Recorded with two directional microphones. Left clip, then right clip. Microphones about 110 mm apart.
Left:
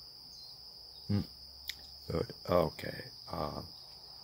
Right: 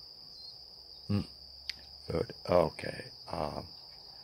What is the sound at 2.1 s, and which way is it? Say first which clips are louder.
Speech: right 3 dB; 30° left (ahead or behind).